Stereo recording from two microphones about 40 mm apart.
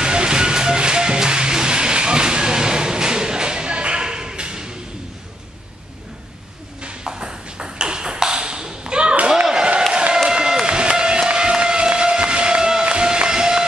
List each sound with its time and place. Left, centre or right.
0.0 s music: right
6.8 s ping: right
9.3 s a sound: centre
10.3 s run: centre